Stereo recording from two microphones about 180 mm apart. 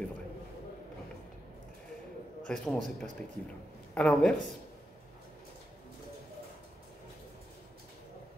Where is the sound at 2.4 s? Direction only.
5° left (ahead or behind).